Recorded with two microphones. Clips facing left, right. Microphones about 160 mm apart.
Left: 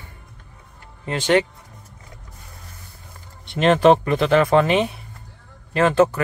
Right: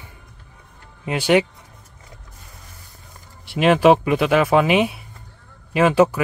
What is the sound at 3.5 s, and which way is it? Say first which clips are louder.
Speech: even; 5° right (ahead or behind).